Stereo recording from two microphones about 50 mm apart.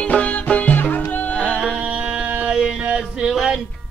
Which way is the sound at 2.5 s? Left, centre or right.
Right.